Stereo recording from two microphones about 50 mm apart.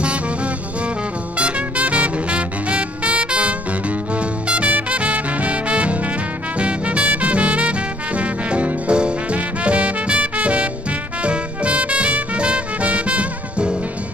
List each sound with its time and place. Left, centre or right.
0.0 s music: right
4.1 s swing music: right
6.6 s music: right